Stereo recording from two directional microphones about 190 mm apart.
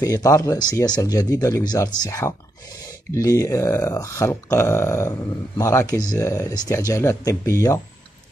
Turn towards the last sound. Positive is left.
turn(degrees=15)  # may be behind; listen again after turning